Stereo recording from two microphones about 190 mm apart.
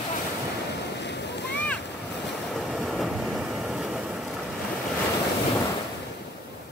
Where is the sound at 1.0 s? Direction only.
65° left (ahead or behind).